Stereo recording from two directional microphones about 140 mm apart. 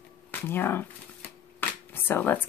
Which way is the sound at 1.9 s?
15° left (ahead or behind).